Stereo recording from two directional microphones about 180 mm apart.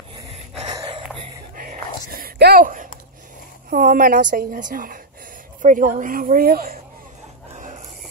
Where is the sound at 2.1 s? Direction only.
60° right (ahead or behind).